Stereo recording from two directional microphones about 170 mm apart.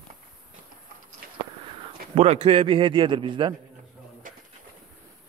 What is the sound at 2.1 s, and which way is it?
Speech, 35° right (ahead or behind).